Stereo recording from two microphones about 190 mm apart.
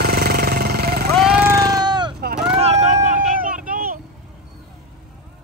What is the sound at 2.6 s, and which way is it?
Vehicle, 35° right (ahead or behind).